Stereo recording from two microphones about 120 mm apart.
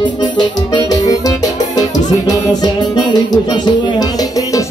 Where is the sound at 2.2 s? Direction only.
35° left (ahead or behind).